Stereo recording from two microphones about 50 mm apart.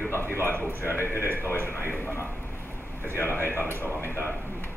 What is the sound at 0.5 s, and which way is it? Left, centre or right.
Speech, left.